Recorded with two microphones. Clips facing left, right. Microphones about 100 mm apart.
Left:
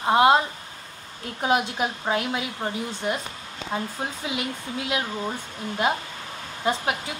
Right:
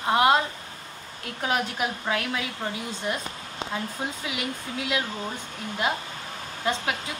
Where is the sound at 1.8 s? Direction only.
25° left (ahead or behind).